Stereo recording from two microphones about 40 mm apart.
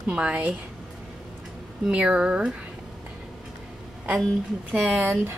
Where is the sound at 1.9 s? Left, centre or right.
Right.